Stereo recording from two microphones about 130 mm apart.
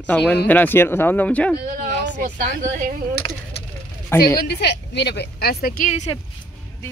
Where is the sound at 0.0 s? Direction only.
10° left (ahead or behind).